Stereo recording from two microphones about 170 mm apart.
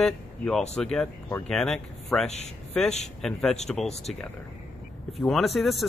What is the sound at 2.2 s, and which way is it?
Speech, 40° left (ahead or behind).